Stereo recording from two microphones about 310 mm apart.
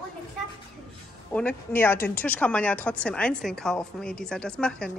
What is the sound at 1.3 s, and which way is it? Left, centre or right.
Speech, centre.